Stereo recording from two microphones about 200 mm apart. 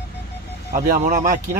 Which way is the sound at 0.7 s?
45° right (ahead or behind).